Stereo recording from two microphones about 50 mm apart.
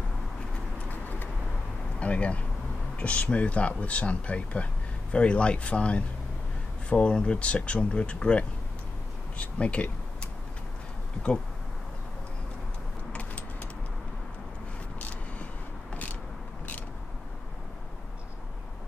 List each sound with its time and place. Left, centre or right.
2.0 s speech: left
9.4 s a sound: left
13.1 s keys jangling: left
15.0 s vehicle: left